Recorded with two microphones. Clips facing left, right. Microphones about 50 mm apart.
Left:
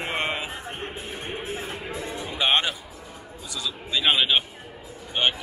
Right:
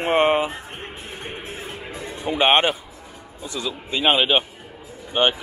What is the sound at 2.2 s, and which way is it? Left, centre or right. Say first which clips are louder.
A man's voice: right 6 dB; right.